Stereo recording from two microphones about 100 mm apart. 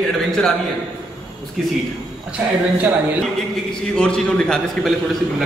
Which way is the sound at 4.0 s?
10° left (ahead or behind).